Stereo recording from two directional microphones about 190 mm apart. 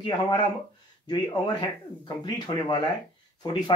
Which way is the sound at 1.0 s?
20° left (ahead or behind).